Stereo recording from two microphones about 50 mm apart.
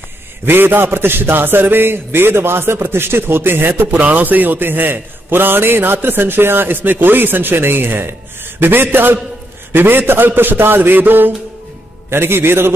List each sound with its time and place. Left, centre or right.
0.5 s a man's voice: right
3.9 s a man's voice: right
12.1 s a man's voice: right